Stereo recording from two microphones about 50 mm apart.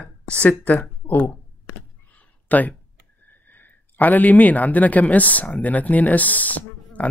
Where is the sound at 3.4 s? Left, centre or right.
Left.